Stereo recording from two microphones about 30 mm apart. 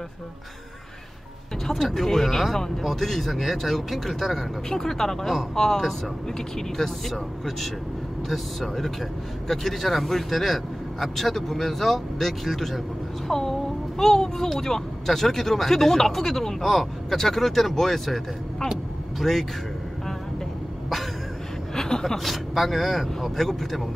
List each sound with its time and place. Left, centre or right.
1.9 s speech: centre
4.6 s speech: centre
6.8 s speech: centre
13.3 s speech: centre
21.7 s speech: centre
22.0 s speech: centre